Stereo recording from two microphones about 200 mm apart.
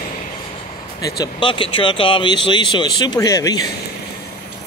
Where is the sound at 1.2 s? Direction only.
25° left (ahead or behind).